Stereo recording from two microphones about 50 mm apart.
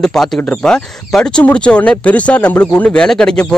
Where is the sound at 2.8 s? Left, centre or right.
Centre.